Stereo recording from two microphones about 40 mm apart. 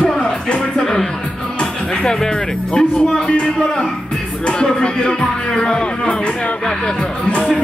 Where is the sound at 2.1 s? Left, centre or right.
Centre.